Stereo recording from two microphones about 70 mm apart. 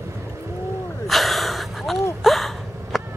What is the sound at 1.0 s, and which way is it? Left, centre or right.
Gasp, centre.